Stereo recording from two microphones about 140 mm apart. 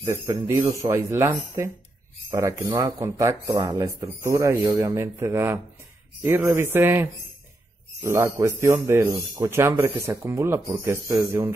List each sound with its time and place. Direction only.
0.0 s speech: 20° right (ahead or behind)
2.8 s speech: 25° right (ahead or behind)